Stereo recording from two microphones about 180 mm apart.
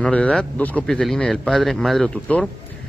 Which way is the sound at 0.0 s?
5° left (ahead or behind).